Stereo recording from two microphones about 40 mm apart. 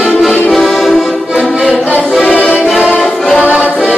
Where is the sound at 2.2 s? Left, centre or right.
Left.